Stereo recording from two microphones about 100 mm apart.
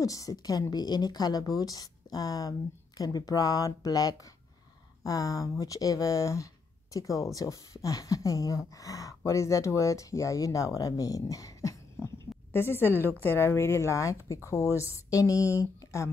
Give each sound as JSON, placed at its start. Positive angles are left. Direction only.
{"t": 0.0, "sound": "speech", "side_deg": 35}
{"t": 12.5, "sound": "speech", "side_deg": 25}